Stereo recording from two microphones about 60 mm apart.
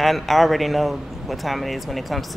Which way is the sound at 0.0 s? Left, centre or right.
Centre.